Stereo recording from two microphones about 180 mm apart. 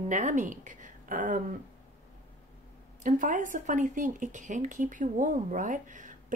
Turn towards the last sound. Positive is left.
turn(degrees=-45)  # may be behind; listen again after turning